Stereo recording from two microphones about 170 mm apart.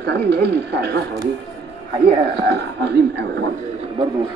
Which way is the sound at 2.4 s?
75° right (ahead or behind).